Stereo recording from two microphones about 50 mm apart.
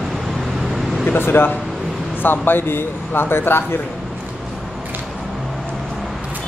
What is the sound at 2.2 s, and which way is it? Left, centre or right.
Speech, left.